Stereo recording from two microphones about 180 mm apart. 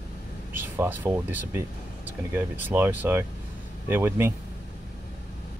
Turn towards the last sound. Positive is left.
turn(degrees=-15)  # may be behind; listen again after turning